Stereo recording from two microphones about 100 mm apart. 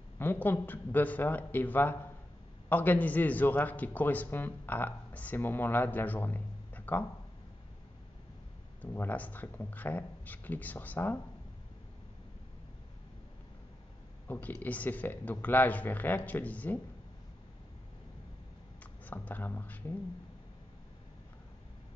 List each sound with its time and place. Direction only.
0.2 s a man's voice: 20° left (ahead or behind)
8.8 s a man's voice: 20° left (ahead or behind)
14.2 s a man's voice: 15° left (ahead or behind)
19.0 s a man's voice: 15° left (ahead or behind)